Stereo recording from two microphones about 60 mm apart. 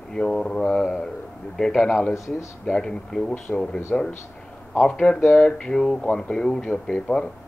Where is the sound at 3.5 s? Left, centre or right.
Centre.